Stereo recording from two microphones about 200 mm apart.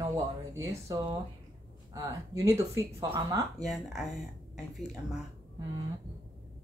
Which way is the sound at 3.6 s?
Centre (ahead or behind).